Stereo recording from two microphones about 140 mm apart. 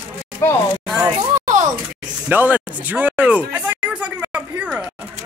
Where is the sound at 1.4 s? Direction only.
65° right (ahead or behind).